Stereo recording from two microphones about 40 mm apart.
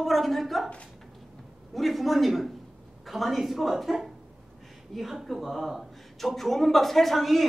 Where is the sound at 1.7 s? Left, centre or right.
Centre.